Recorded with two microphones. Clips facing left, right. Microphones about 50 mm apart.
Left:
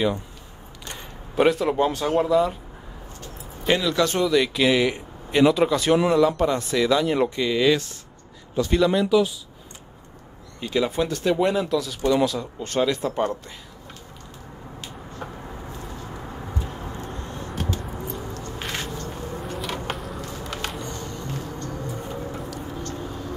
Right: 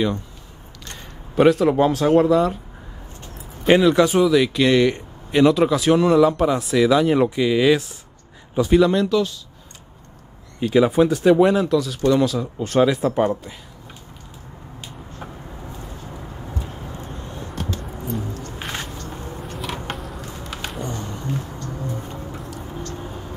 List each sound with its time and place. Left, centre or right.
0.9 s speech: centre
3.6 s speech: centre
10.6 s speech: centre
18.6 s a sound: centre
20.9 s music: centre
22.3 s vehicle: centre
23.0 s vehicle: centre